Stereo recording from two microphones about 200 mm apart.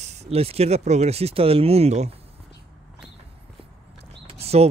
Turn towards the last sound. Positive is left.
turn(degrees=-30)  # may be behind; listen again after turning